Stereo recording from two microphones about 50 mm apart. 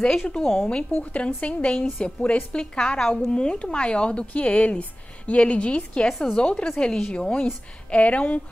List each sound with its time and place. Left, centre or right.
0.2 s speech: centre
1.1 s speech: left
3.0 s speech: centre
3.3 s speech: left